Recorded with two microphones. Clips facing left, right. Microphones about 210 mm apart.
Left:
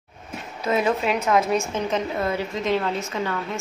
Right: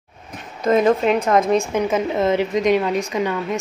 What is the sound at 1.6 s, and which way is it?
Speech, 5° right (ahead or behind).